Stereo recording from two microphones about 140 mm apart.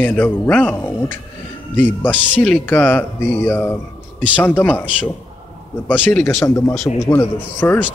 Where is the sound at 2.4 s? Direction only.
10° left (ahead or behind).